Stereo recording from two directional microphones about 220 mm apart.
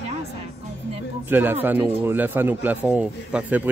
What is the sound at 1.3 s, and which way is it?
Speech, 10° right (ahead or behind).